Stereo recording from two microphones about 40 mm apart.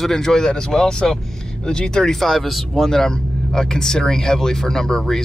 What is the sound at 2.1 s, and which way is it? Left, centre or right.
Speech, centre.